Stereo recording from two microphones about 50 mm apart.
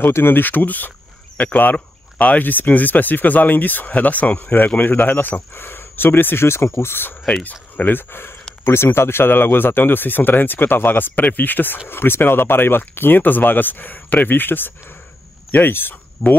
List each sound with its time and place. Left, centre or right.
0.1 s speech: left
5.5 s speech: left
7.7 s speech: left
8.1 s speech: left
16.2 s speech: centre